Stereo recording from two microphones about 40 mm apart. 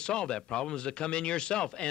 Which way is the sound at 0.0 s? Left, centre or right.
Left.